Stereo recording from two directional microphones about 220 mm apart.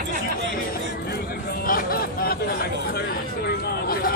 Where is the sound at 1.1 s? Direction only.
40° left (ahead or behind).